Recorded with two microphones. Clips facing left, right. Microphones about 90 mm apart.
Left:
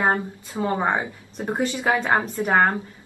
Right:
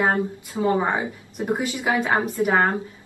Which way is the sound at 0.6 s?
25° left (ahead or behind).